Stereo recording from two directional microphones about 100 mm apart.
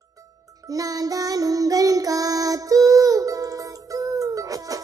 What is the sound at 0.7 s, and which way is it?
Child singing, 35° right (ahead or behind).